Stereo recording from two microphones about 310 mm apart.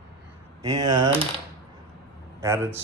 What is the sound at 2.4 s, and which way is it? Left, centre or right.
Speech, centre.